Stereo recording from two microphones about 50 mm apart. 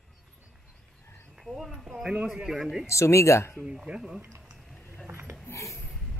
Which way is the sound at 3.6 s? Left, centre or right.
Centre.